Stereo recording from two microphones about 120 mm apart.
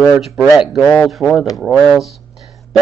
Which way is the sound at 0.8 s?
35° left (ahead or behind).